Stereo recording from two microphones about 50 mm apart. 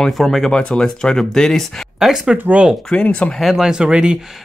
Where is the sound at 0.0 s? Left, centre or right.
Centre.